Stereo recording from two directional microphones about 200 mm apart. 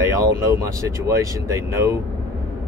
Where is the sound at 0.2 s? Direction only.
15° right (ahead or behind).